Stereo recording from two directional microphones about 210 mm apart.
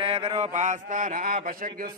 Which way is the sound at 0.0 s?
30° right (ahead or behind).